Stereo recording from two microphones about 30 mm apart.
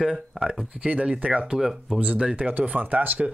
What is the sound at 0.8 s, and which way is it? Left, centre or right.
Speech, right.